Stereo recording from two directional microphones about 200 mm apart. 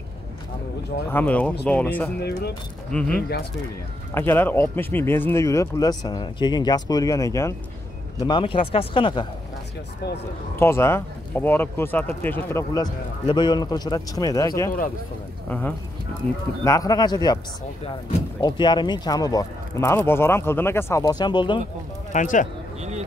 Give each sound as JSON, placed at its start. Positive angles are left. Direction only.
{"t": 1.1, "sound": "speech", "side_deg": 5}
{"t": 3.2, "sound": "speech", "side_deg": 50}
{"t": 4.1, "sound": "speech", "side_deg": 10}
{"t": 10.5, "sound": "speech", "side_deg": 10}
{"t": 16.6, "sound": "speech", "side_deg": 15}
{"t": 18.4, "sound": "speech", "side_deg": 20}
{"t": 22.1, "sound": "speech", "side_deg": 40}
{"t": 22.8, "sound": "speech", "side_deg": -35}